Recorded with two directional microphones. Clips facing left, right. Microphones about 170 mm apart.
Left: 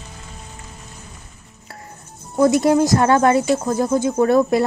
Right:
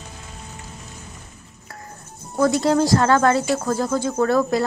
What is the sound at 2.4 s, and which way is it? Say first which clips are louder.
Speech: left 3 dB; 20° left (ahead or behind).